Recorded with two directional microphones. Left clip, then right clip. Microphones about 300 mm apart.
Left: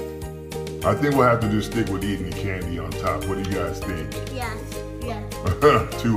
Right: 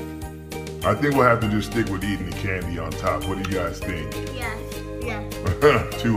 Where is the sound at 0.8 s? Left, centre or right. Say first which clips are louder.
Even; centre.